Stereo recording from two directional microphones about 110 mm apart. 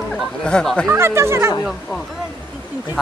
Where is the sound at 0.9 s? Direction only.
20° right (ahead or behind).